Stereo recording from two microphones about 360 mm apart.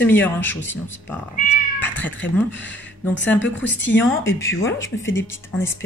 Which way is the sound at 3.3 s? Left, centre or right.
Left.